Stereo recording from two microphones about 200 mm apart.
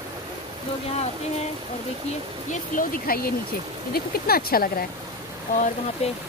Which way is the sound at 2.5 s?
45° left (ahead or behind).